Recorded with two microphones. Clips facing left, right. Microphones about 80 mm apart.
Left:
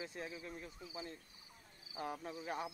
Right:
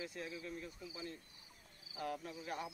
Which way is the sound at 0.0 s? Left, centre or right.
Left.